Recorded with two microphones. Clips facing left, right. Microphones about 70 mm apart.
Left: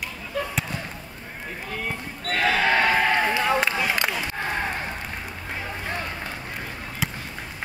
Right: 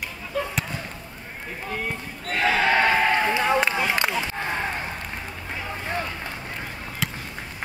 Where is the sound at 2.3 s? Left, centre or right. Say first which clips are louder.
Even; right.